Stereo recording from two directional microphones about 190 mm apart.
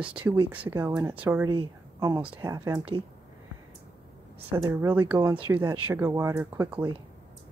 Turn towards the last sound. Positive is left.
turn(degrees=-15)  # may be behind; listen again after turning